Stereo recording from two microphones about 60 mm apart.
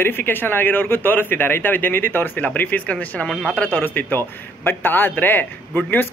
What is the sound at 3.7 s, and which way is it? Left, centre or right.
Speech, left.